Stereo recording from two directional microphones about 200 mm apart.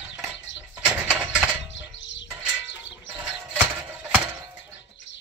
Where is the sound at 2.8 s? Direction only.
5° right (ahead or behind).